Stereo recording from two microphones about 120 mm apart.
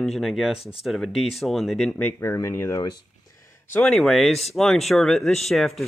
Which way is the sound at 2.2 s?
20° left (ahead or behind).